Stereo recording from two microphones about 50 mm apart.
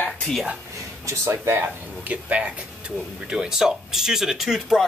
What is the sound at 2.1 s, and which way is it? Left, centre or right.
Speech, right.